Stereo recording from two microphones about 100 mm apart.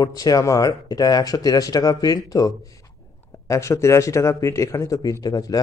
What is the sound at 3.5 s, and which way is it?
A man's voice, 30° left (ahead or behind).